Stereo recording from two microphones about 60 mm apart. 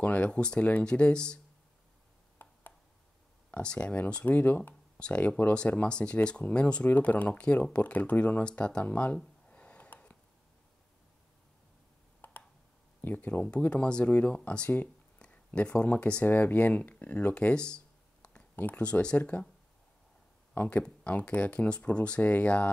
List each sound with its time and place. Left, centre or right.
0.0 s speech: left
2.4 s a sound: left
3.5 s speech: left
8.8 s a sound: left
12.2 s clicking: left
13.0 s speech: left
16.3 s speech: left
20.5 s speech: left